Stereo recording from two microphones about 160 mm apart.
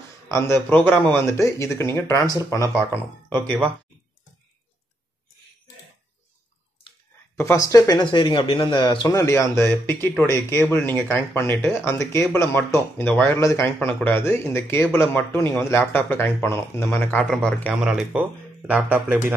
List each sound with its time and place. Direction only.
0.3 s speech: 15° left (ahead or behind)
7.3 s speech: 20° left (ahead or behind)
9.0 s speech: 20° left (ahead or behind)
17.8 s speech: 5° right (ahead or behind)